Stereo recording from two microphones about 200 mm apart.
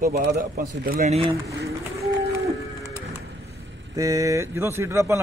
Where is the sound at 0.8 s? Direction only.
40° right (ahead or behind).